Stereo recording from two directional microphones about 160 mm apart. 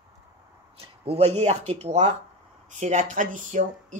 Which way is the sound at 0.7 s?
40° right (ahead or behind).